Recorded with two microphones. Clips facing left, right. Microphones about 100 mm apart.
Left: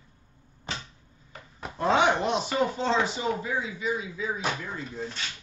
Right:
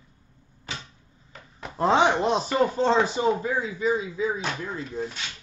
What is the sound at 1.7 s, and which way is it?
Speech, 35° right (ahead or behind).